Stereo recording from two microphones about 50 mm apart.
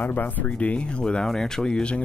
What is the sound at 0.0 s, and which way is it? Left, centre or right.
Speech, left.